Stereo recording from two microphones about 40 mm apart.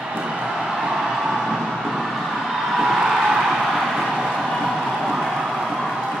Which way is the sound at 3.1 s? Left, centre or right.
Centre.